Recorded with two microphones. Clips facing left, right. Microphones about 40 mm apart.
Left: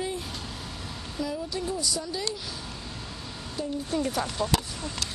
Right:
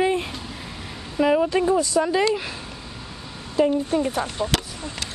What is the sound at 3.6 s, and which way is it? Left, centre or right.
Speech, right.